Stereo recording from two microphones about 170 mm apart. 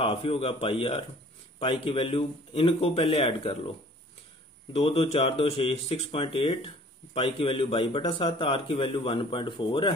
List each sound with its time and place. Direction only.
0.0 s a man's voice: 35° left (ahead or behind)
4.7 s a man's voice: 35° left (ahead or behind)